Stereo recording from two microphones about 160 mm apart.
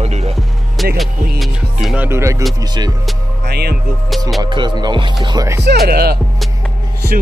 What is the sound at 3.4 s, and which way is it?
Speech, 85° right.